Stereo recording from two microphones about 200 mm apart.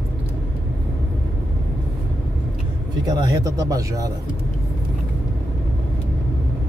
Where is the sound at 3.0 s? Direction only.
20° right (ahead or behind).